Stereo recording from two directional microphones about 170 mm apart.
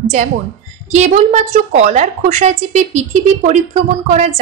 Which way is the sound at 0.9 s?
45° right (ahead or behind).